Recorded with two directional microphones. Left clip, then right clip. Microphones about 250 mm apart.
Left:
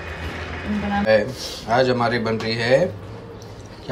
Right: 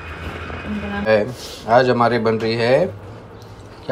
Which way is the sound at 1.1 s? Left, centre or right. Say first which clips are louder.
Right 2 dB; centre.